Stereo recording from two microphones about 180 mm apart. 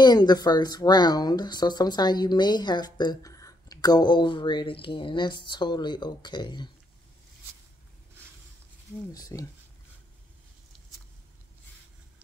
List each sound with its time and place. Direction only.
0.0 s speech: 25° left (ahead or behind)
9.1 s speech: 20° left (ahead or behind)